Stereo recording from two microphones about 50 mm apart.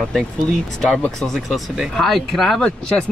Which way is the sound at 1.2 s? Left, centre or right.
Centre.